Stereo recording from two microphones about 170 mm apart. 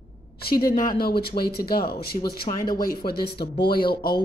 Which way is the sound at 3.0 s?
65° left (ahead or behind).